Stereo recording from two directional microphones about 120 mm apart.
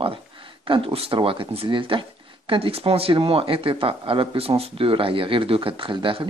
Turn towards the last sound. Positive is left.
turn(degrees=-45)  # may be behind; listen again after turning